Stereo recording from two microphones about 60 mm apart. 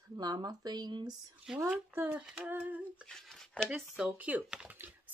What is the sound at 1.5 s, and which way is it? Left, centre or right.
Speech, centre.